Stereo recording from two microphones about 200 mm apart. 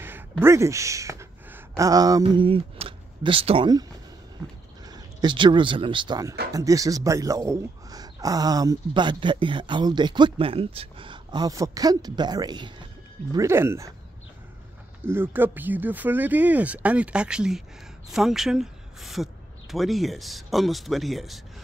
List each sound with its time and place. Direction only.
0.0 s speech: 10° right (ahead or behind)
4.8 s speech: 20° right (ahead or behind)
15.0 s speech: 10° right (ahead or behind)